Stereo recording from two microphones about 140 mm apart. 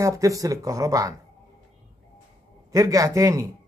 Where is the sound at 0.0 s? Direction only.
25° right (ahead or behind).